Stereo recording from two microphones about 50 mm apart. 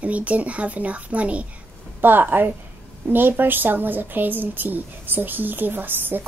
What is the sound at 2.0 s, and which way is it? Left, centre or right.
A woman's voice, right.